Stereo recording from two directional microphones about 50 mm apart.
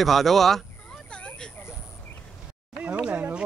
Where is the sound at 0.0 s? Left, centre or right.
Centre.